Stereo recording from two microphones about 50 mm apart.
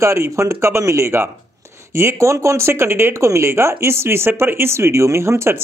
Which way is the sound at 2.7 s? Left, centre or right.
Right.